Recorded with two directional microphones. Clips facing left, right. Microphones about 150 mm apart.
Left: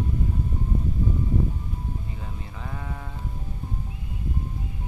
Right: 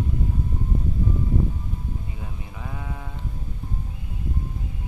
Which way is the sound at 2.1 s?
10° right (ahead or behind).